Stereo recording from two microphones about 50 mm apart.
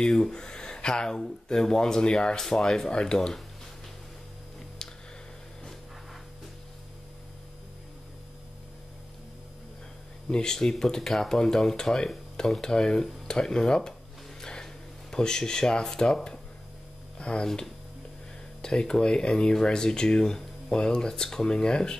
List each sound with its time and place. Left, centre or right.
0.0 s speech: centre
10.3 s speech: centre
14.4 s a sound: centre
17.2 s speech: centre
18.6 s speech: centre